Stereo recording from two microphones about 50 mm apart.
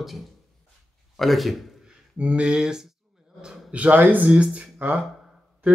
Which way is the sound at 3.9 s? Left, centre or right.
Right.